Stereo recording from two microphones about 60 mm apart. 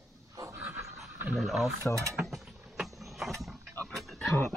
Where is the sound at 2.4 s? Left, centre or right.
Centre.